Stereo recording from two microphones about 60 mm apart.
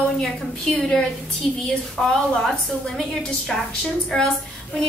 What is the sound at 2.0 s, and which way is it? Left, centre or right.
A woman's voice, centre.